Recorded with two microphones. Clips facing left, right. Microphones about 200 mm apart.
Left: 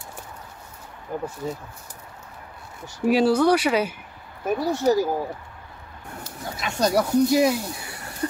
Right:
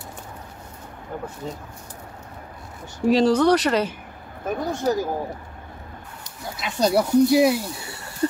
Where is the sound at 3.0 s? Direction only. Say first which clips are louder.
Right 1 dB; 10° left (ahead or behind).